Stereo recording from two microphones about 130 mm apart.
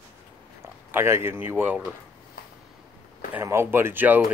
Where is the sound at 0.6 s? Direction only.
20° right (ahead or behind).